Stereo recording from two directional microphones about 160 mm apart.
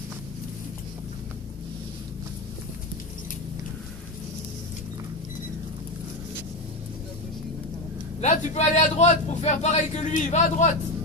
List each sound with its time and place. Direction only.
8.2 s speech: 45° left (ahead or behind)